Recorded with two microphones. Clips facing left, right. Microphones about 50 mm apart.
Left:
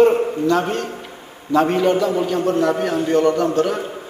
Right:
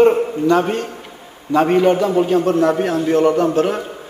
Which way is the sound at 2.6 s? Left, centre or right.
Right.